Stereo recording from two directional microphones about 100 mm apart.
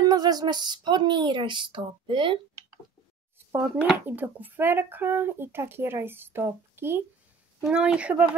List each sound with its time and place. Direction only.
0.0 s speech: 40° right (ahead or behind); by 2.4 s 55° right (ahead or behind)
3.9 s speech: 20° right (ahead or behind)
7.6 s speech: 10° right (ahead or behind)